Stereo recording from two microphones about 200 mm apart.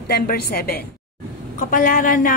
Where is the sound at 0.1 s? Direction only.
50° left (ahead or behind).